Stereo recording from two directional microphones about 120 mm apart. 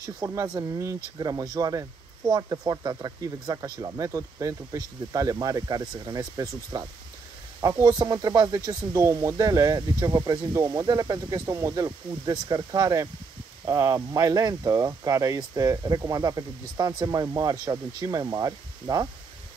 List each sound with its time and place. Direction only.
0.0 s speech: 30° right (ahead or behind)